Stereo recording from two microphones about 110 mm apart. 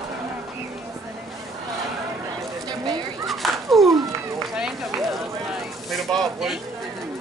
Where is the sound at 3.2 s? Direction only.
Centre (ahead or behind).